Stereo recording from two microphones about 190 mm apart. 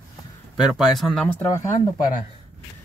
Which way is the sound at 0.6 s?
Centre (ahead or behind).